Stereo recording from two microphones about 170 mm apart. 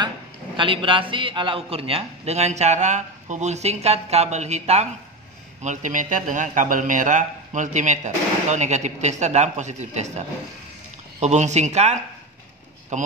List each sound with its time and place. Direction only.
0.6 s a man's voice: 30° right (ahead or behind)